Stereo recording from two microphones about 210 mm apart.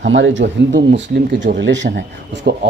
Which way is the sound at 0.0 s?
60° right (ahead or behind).